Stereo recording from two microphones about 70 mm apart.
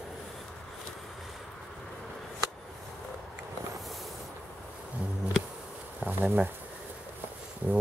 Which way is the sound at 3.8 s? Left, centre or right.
Centre.